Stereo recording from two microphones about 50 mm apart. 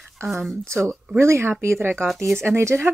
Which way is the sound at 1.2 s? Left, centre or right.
Right.